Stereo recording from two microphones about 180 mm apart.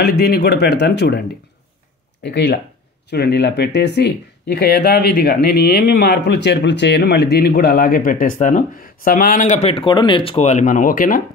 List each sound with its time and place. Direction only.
0.0 s speech: 60° left (ahead or behind)
2.2 s speech: 70° left (ahead or behind); by 11.2 s 50° left (ahead or behind)